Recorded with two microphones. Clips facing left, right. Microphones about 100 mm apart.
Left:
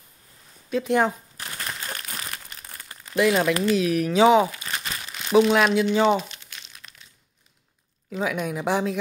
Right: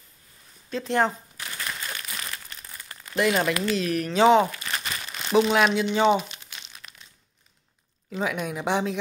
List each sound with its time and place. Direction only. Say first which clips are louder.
0.7 s speech: left 2 dB; 5° left (ahead or behind)
1.4 s a sound: even; 35° left (ahead or behind)
1.9 s crumpling: left 1 dB; 35° left (ahead or behind)
3.2 s speech: left 3 dB; centre (ahead or behind)
6.8 s crumpling: right 1 dB; centre (ahead or behind)
8.1 s speech: left 2 dB; centre (ahead or behind)